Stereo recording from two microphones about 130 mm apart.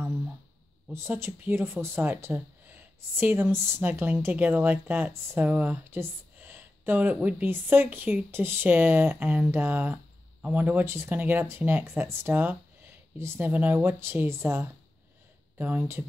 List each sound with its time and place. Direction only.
0.9 s speech: 20° right (ahead or behind)